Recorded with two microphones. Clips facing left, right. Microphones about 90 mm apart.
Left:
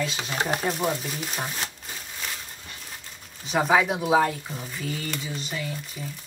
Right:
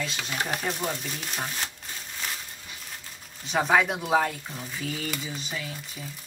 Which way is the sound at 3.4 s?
Centre (ahead or behind).